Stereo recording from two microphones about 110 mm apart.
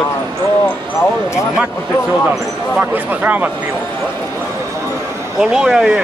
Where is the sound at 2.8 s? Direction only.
15° right (ahead or behind).